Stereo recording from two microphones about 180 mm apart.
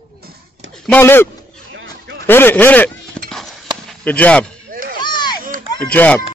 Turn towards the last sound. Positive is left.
turn(degrees=5)  # may be behind; listen again after turning